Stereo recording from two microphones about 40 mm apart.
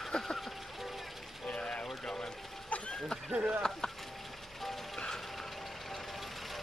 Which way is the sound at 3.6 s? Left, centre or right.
Centre.